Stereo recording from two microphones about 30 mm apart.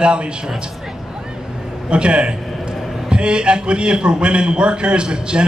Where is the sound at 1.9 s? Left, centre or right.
Right.